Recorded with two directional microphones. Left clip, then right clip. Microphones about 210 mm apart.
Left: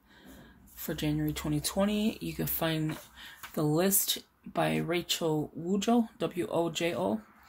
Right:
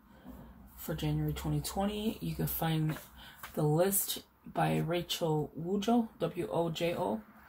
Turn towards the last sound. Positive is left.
turn(degrees=50)  # may be behind; listen again after turning